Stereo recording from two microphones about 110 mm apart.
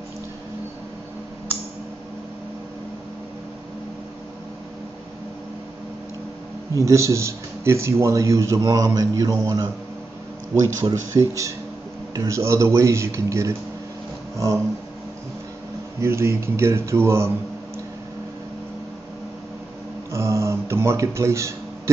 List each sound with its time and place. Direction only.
6.7 s speech: 25° right (ahead or behind)
14.3 s a sound: 30° right (ahead or behind)
16.0 s speech: 25° right (ahead or behind)
20.1 s speech: 25° right (ahead or behind)